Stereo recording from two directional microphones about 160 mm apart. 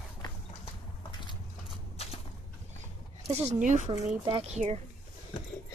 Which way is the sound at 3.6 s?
50° right (ahead or behind).